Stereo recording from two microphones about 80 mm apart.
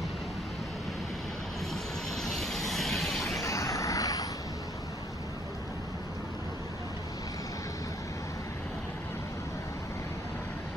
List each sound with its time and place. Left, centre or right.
2.2 s vehicle: centre
3.4 s vehicle: left